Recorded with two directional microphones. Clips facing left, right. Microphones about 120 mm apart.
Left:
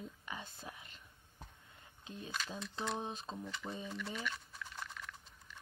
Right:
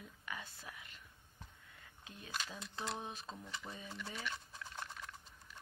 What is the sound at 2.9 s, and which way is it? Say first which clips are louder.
Speech: left 4 dB; 20° left (ahead or behind).